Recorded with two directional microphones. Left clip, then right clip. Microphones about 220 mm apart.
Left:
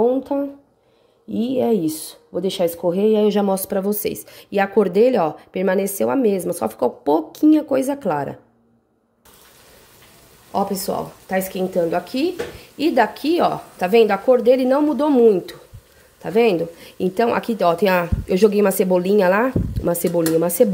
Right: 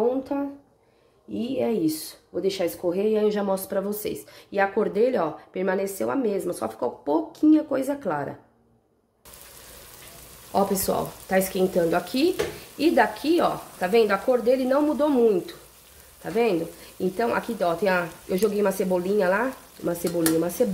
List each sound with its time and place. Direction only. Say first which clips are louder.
0.3 s speech: left 6 dB; 35° left (ahead or behind)
10.5 s speech: left 1 dB; 10° left (ahead or behind); by 20.6 s 30° left (ahead or behind)